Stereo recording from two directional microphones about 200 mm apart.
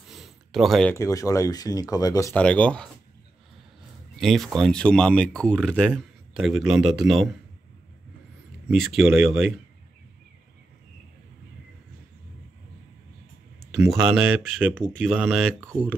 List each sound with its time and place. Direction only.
0.1 s a sound: centre (ahead or behind)
0.9 s speech: 15° left (ahead or behind)
4.2 s speech: centre (ahead or behind)
8.6 s speech: centre (ahead or behind)
9.1 s speech: 10° right (ahead or behind)
13.7 s speech: 5° right (ahead or behind)
14.7 s speech: 5° left (ahead or behind)
15.6 s speech: 10° right (ahead or behind)